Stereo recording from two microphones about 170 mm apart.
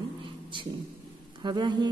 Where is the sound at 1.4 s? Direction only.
25° right (ahead or behind).